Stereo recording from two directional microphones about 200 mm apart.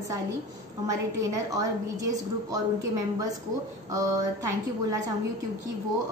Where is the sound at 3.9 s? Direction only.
15° right (ahead or behind).